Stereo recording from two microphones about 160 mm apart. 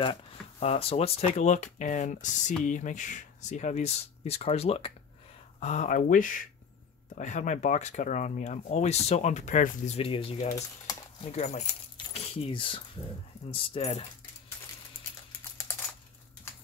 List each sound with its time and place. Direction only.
0.0 s speech: 30° left (ahead or behind)
11.3 s speech: 45° left (ahead or behind)
12.1 s speech: 35° left (ahead or behind)